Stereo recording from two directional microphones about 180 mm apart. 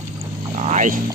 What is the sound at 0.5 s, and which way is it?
Speech, 40° right (ahead or behind).